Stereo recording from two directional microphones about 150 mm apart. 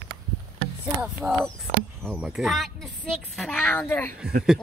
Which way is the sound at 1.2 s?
Centre (ahead or behind).